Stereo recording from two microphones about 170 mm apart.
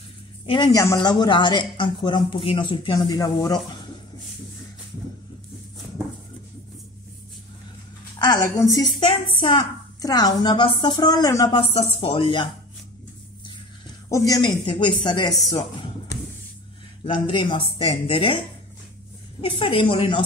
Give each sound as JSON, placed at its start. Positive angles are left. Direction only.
{"t": 0.5, "sound": "a woman's voice", "side_deg": 25}
{"t": 8.2, "sound": "a woman's voice", "side_deg": 25}
{"t": 14.0, "sound": "a woman's voice", "side_deg": 20}
{"t": 15.5, "sound": "a sound", "side_deg": 20}
{"t": 17.0, "sound": "speech", "side_deg": 30}
{"t": 19.4, "sound": "speech", "side_deg": 30}